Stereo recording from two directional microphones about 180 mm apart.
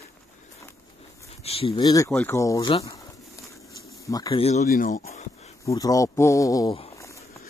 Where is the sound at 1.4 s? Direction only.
35° left (ahead or behind).